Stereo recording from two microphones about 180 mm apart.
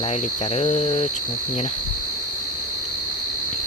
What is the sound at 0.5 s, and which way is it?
Speech, 35° left (ahead or behind).